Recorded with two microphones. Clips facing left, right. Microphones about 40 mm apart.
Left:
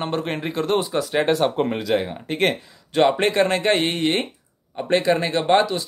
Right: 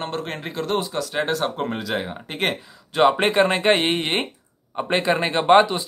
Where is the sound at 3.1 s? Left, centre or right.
Centre.